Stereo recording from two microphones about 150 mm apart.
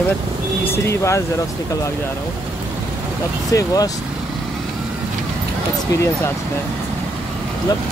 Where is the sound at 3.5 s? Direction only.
25° left (ahead or behind).